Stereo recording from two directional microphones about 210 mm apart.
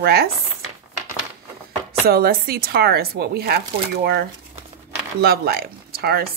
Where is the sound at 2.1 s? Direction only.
45° right (ahead or behind).